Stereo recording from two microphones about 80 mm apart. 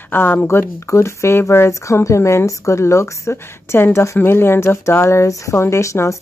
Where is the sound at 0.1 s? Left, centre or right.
Left.